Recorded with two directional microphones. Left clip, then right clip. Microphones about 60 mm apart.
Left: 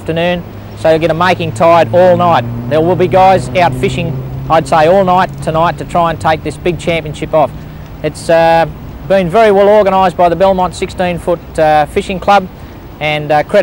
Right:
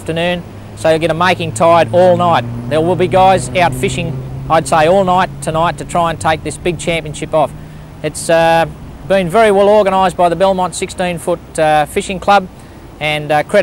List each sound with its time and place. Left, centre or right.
0.0 s speech: right